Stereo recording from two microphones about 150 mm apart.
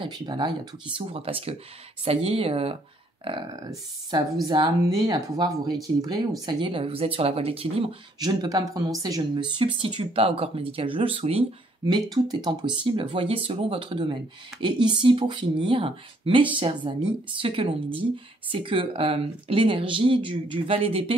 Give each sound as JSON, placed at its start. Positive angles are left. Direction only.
{"t": 0.0, "sound": "speech", "side_deg": -30}
{"t": 4.1, "sound": "speech", "side_deg": -25}
{"t": 8.2, "sound": "speech", "side_deg": -30}
{"t": 11.8, "sound": "speech", "side_deg": -25}